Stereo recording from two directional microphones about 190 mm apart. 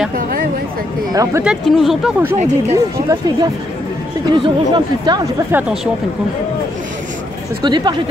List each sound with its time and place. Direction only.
1.1 s speech: 15° right (ahead or behind)
1.4 s speech: centre (ahead or behind)
2.7 s speech: 20° right (ahead or behind)
5.5 s speech: 10° right (ahead or behind)
7.6 s speech: 25° right (ahead or behind)